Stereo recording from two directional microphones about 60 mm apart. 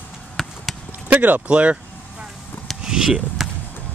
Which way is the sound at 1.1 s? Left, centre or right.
Right.